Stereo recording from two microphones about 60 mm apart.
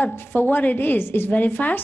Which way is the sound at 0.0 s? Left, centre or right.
Left.